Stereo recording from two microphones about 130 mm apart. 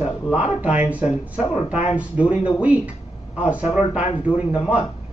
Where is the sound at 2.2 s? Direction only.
40° left (ahead or behind).